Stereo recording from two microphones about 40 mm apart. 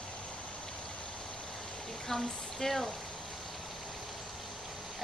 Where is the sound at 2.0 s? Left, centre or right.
Centre.